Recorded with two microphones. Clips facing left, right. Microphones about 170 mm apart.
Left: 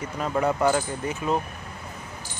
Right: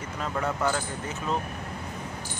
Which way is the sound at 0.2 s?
15° left (ahead or behind).